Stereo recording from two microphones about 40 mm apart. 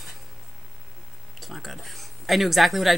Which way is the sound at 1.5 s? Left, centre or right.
Centre.